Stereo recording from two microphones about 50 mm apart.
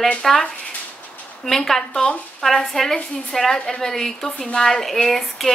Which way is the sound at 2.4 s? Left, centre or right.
Centre.